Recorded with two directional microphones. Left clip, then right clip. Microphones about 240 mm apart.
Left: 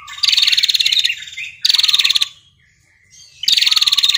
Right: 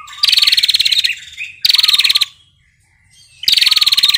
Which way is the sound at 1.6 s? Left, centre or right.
Centre.